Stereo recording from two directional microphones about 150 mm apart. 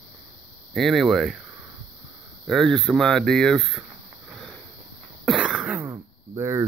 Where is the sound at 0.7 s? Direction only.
Centre (ahead or behind).